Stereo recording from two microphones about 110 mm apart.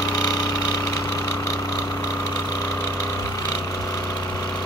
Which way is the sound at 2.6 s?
35° left (ahead or behind).